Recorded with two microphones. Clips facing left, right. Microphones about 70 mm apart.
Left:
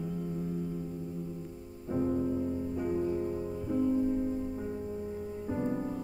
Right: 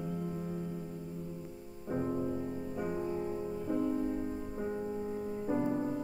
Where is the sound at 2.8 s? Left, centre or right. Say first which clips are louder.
Left 3 dB; centre.